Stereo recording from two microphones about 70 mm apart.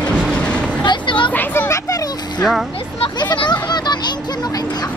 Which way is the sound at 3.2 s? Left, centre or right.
Left.